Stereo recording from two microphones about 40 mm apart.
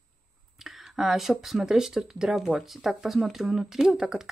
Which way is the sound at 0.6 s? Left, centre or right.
Centre.